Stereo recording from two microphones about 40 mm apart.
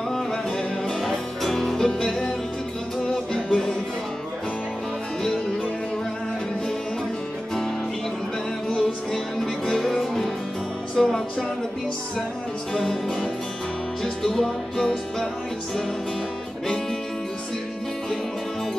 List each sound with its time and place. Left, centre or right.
0.8 s music: centre
3.4 s music: centre
8.6 s music: centre
11.0 s music: centre
14.2 s music: centre